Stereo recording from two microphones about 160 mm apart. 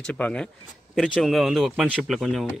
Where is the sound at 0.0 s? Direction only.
5° left (ahead or behind).